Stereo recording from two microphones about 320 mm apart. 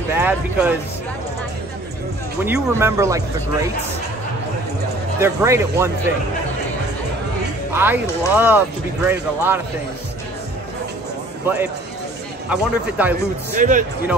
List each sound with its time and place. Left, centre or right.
0.1 s speech: centre
2.4 s speech: centre
5.2 s speech: centre
7.7 s speech: centre
11.4 s speech: centre
13.6 s speech: right